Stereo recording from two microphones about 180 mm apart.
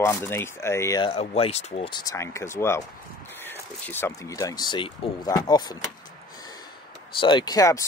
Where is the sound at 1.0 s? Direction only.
35° left (ahead or behind).